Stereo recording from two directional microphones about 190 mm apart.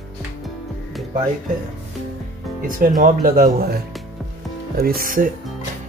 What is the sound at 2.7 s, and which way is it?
Speech, 50° right (ahead or behind).